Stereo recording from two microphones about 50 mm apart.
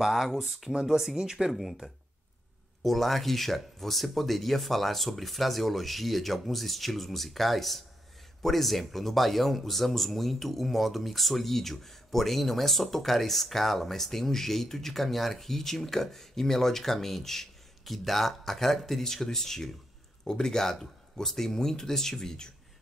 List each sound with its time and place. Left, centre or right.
0.0 s speech: centre
1.5 s speech: centre